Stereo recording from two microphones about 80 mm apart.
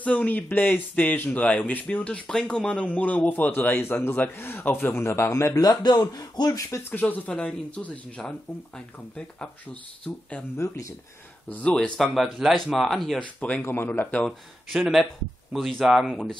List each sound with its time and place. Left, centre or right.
0.0 s speech: centre; by 5.6 s left
5.6 s speech: left
6.9 s speech: left
11.4 s speech: centre
12.0 s speech: centre
13.2 s speech: centre
13.6 s speech: left
14.7 s speech: centre